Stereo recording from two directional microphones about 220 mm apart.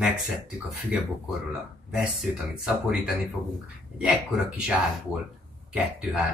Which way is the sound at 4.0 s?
5° right (ahead or behind).